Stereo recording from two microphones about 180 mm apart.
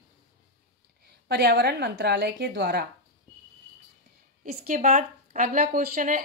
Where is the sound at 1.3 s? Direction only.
65° right (ahead or behind).